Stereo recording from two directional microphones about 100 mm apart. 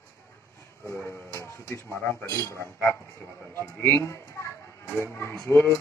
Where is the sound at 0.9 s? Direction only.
25° left (ahead or behind).